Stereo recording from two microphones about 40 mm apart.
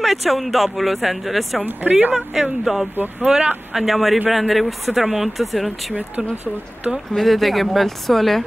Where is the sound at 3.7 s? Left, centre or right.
Centre.